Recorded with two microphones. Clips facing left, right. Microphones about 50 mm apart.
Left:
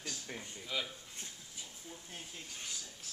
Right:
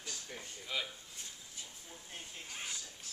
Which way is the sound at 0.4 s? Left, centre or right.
Centre.